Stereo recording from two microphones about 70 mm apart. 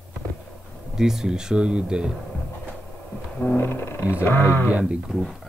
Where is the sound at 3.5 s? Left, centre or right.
Left.